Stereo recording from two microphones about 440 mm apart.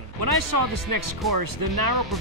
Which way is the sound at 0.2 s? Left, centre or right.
Right.